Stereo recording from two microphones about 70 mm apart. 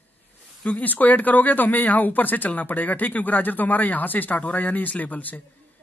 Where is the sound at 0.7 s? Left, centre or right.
Left.